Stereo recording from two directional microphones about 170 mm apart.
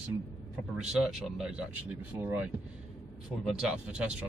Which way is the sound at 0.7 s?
5° right (ahead or behind).